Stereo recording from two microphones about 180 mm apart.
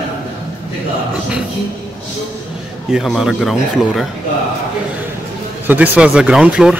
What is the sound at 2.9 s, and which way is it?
Speech, centre (ahead or behind).